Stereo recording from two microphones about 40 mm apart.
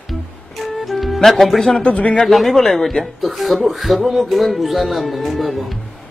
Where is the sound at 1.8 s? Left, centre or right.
Left.